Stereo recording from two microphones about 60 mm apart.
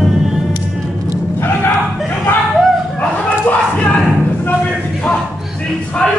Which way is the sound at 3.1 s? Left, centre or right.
Centre.